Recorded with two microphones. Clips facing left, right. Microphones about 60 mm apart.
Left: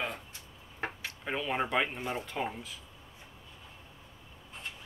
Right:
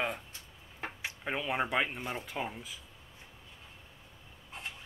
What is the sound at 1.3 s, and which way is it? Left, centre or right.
Speech, centre.